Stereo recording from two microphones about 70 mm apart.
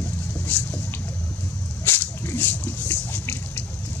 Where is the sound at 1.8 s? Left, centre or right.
Left.